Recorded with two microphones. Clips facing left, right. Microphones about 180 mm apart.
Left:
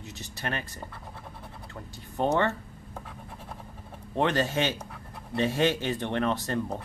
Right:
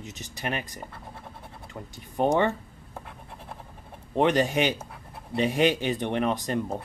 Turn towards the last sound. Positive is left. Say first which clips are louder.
# right 1 dB
turn(degrees=-15)  # may be behind; listen again after turning